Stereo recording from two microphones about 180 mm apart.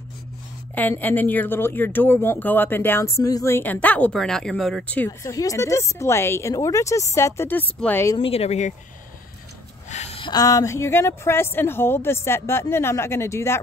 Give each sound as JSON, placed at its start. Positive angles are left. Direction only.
{"t": 0.7, "sound": "speech", "side_deg": 10}
{"t": 8.2, "sound": "speech", "side_deg": 35}
{"t": 9.8, "sound": "speech", "side_deg": 35}